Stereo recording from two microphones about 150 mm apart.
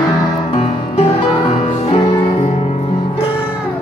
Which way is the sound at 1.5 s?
40° left (ahead or behind).